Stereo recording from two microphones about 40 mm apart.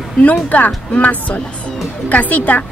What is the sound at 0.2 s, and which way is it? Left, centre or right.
Speech, left.